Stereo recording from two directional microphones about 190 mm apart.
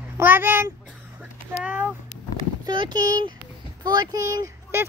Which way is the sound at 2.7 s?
20° right (ahead or behind).